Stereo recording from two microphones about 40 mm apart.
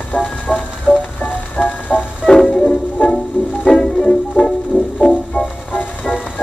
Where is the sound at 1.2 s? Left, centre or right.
Left.